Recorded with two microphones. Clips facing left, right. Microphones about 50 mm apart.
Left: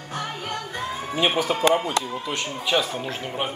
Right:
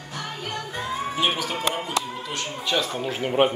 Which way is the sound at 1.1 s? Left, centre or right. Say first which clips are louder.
Left 5 dB; left.